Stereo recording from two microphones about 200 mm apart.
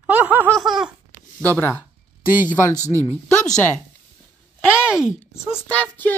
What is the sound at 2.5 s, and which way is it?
Speech, 10° left (ahead or behind).